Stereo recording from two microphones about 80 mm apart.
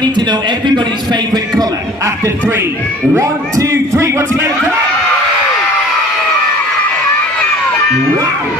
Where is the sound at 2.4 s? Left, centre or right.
Right.